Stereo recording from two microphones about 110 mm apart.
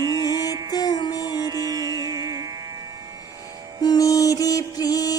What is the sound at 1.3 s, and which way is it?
Music, 35° right (ahead or behind).